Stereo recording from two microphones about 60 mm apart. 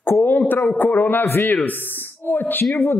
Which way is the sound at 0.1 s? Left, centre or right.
Left.